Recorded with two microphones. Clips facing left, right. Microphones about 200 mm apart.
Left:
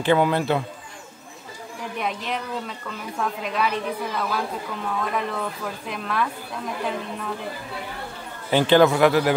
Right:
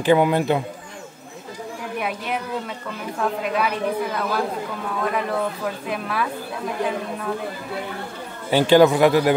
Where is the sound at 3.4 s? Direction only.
5° right (ahead or behind).